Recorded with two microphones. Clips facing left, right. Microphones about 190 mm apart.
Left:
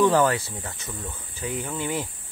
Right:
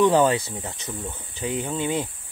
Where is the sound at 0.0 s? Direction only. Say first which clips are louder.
Right 2 dB; 20° right (ahead or behind).